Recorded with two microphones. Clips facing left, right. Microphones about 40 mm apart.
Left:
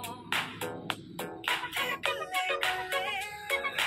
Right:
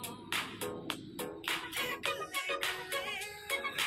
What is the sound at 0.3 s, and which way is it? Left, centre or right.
Music, left.